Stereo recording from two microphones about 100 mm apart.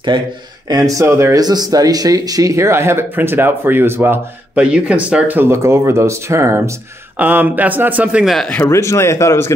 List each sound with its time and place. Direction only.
0.1 s speech: 50° right (ahead or behind)
0.7 s speech: 35° right (ahead or behind)
1.4 s speech: 40° right (ahead or behind); by 4.2 s 25° right (ahead or behind)
4.6 s speech: 10° right (ahead or behind); by 6.7 s 30° right (ahead or behind)
7.2 s speech: 20° right (ahead or behind)
8.6 s speech: 30° left (ahead or behind)